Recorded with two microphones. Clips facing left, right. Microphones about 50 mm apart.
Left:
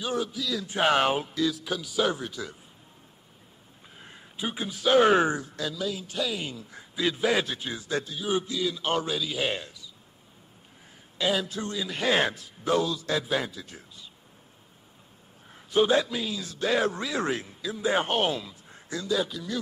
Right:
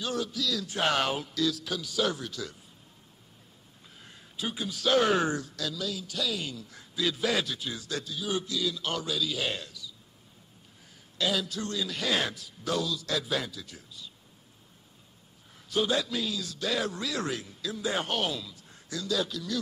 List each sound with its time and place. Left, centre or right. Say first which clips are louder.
0.0 s speech: left 2 dB; centre
4.0 s speech: left 2 dB; left
11.1 s speech: left 3 dB; left
15.7 s speech: left 5 dB; left